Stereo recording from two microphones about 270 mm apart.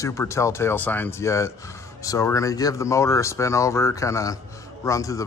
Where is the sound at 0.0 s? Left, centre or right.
Centre.